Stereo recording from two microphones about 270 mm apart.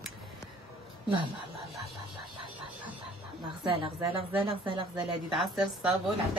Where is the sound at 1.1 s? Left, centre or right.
Centre.